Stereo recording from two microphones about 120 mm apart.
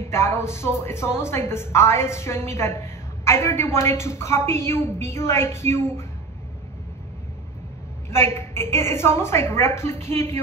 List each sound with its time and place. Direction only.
0.0 s speech: 20° left (ahead or behind)
8.1 s speech: 20° left (ahead or behind)